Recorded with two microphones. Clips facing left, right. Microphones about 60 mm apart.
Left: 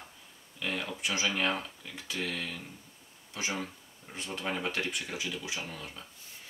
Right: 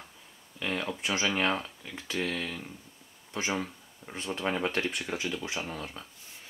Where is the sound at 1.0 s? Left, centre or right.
Right.